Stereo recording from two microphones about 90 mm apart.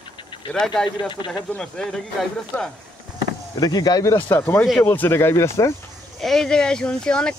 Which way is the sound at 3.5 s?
45° left (ahead or behind).